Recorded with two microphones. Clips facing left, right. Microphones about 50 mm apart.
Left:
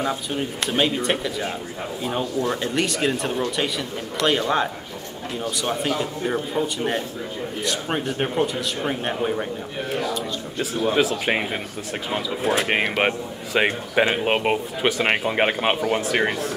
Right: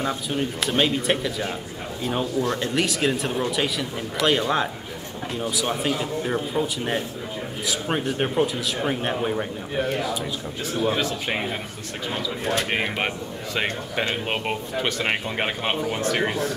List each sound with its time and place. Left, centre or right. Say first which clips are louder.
0.0 s speech: even; centre
13.6 s speech: left 6 dB; centre